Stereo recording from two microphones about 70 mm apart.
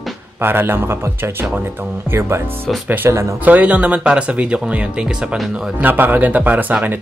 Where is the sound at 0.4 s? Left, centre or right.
Right.